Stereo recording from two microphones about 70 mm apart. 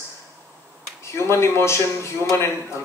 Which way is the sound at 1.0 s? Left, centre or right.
Left.